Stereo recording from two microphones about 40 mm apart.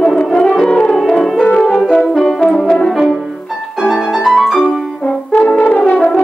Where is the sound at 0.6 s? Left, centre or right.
Centre.